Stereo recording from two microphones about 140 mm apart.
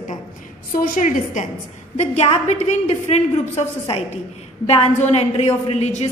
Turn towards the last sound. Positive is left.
turn(degrees=50)  # may be behind; listen again after turning